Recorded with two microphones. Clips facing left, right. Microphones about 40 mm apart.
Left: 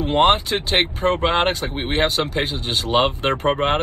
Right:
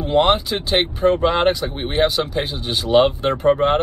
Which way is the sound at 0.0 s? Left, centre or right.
Left.